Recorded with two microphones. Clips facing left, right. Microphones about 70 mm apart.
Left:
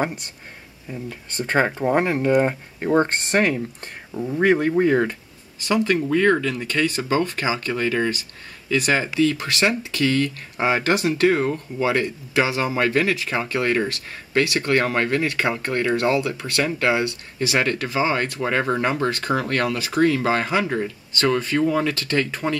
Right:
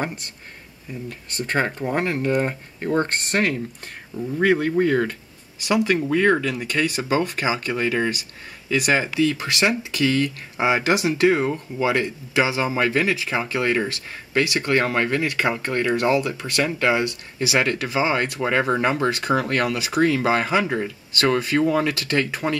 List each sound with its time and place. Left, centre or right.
1.3 s speech: centre
4.1 s speech: left
4.4 s speech: centre
5.6 s speech: centre
9.2 s speech: centre